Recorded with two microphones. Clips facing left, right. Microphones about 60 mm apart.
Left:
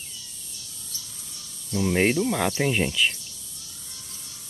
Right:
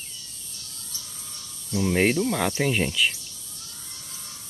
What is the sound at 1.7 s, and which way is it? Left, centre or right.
Speech, centre.